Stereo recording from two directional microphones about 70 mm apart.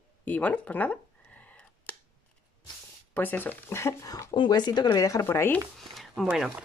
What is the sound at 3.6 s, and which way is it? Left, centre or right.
Speech, left.